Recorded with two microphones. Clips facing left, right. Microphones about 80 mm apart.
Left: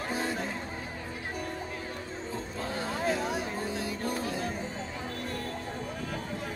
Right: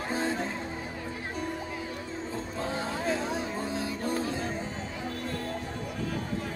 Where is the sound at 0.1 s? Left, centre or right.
Right.